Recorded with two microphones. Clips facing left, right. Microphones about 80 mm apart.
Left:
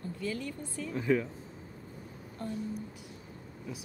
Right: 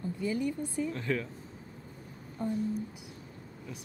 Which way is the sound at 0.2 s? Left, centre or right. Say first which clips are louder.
Right 5 dB; centre.